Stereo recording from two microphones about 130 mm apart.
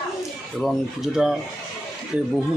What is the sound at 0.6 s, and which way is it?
Speech, centre (ahead or behind).